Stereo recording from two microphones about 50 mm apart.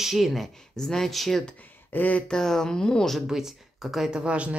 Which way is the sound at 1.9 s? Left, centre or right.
Left.